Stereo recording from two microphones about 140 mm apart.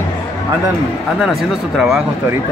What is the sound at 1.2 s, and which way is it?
Speech, centre (ahead or behind).